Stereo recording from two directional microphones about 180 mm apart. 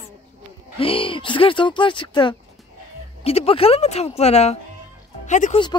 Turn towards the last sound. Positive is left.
turn(degrees=40)  # may be behind; listen again after turning